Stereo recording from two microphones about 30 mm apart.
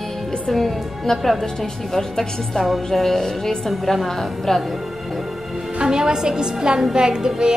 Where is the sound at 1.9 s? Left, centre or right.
Centre.